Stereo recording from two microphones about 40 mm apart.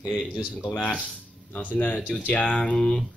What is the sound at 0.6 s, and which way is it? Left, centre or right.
Speech, left.